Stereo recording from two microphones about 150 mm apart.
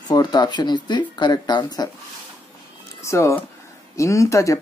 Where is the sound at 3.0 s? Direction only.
20° left (ahead or behind).